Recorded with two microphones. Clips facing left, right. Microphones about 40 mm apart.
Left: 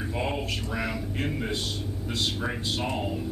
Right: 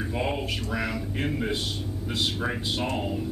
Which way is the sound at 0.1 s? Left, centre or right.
Centre.